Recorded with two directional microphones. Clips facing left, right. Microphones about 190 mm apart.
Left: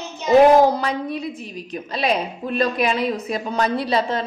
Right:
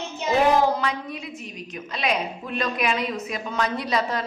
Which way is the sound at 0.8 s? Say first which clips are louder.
Left 5 dB; 35° left (ahead or behind).